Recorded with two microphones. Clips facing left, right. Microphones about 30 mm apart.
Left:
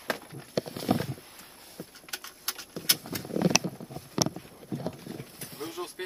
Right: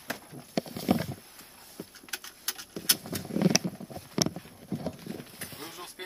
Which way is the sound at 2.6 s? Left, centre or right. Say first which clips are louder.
Left 1 dB; centre.